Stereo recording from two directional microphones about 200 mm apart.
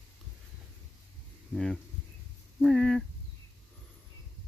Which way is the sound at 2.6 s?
Centre (ahead or behind).